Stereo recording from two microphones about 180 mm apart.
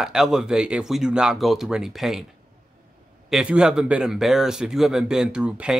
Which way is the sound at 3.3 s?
5° right (ahead or behind).